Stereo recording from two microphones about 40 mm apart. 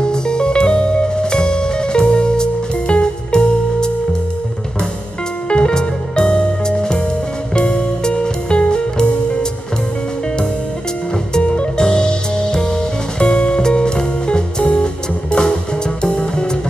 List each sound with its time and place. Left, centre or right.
0.0 s music: left
5.5 s music: left
11.4 s music: left
16.0 s music: left